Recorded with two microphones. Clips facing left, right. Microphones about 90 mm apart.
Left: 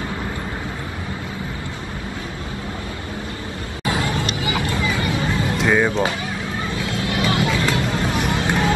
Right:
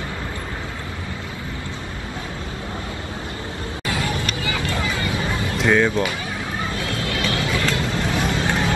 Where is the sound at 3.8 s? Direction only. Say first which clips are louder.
Left 3 dB; 25° left (ahead or behind).